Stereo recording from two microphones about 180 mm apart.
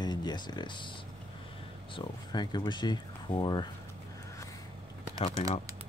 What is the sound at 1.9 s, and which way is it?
Speech, 25° left (ahead or behind).